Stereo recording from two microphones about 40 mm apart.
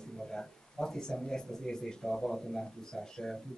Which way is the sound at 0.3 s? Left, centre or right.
Centre.